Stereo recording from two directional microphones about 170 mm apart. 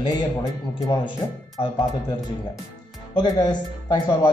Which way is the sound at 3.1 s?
25° left (ahead or behind).